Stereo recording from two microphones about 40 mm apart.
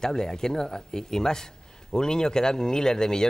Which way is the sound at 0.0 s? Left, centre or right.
Centre.